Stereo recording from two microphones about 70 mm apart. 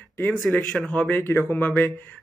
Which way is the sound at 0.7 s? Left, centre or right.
Centre.